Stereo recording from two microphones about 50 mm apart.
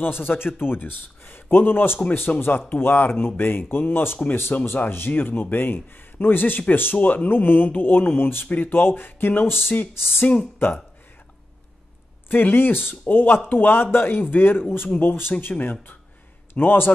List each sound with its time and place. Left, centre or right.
0.0 s a man's voice: left
12.3 s a man's voice: left
15.6 s speech: left
16.5 s a man's voice: left